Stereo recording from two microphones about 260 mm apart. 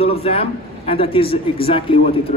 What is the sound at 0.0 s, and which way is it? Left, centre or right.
A man's voice, left.